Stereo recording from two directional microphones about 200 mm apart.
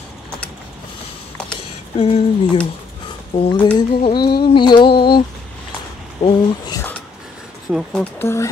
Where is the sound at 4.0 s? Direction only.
25° left (ahead or behind).